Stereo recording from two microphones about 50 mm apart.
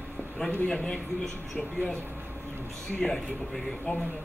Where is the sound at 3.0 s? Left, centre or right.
Centre.